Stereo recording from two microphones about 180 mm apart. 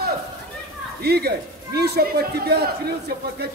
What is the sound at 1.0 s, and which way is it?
Speech, 60° right (ahead or behind).